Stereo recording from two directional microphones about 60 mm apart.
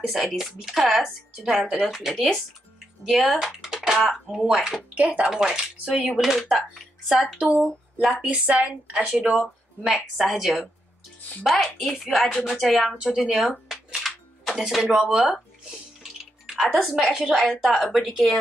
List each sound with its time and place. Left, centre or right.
0.1 s speech: centre
4.9 s speech: right
5.3 s speech: centre
7.3 s speech: centre
9.8 s speech: centre
13.0 s speech: centre
16.0 s clicking: centre
16.8 s speech: centre
17.4 s speech: centre